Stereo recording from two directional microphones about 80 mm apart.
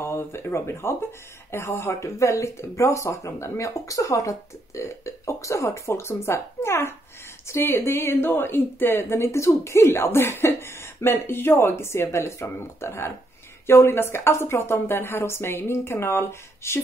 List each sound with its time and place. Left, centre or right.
0.0 s speech: left